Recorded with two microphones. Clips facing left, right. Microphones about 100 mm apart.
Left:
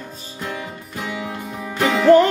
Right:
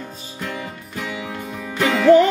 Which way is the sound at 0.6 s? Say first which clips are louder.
Even; 20° left (ahead or behind).